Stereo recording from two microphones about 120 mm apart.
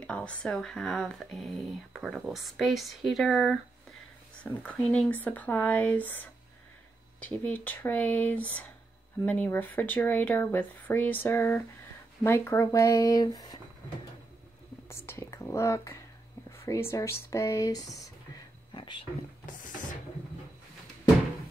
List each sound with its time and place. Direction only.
0.0 s speech: 10° left (ahead or behind)
4.6 s speech: 10° left (ahead or behind); by 13.6 s 30° left (ahead or behind)
14.9 s speech: 25° left (ahead or behind)
18.7 s a sound: 45° left (ahead or behind)